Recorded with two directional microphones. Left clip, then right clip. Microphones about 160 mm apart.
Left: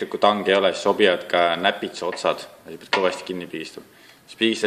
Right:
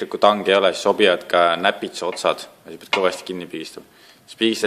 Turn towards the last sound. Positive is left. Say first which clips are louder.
# right 1 dB
turn(degrees=-30)  # may be behind; listen again after turning